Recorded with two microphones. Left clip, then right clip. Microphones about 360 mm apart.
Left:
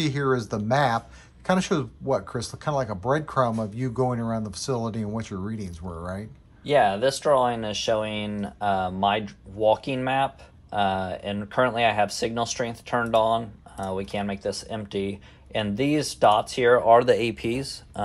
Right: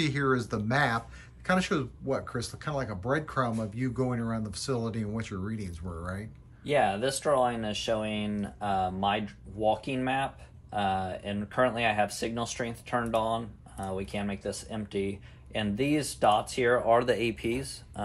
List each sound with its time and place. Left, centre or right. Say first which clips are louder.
0.0 s speech: left 3 dB; centre
6.6 s speech: left 6 dB; left